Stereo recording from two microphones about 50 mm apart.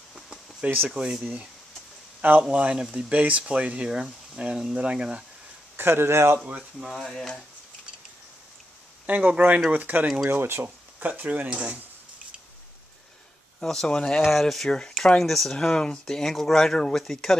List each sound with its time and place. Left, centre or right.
0.1 s a sound: centre
0.8 s speech: centre
2.5 s speech: right
3.1 s speech: right
5.8 s speech: right
6.8 s speech: centre
9.0 s speech: right
10.3 s speech: right
11.0 s speech: right
11.5 s speech: centre
13.6 s speech: centre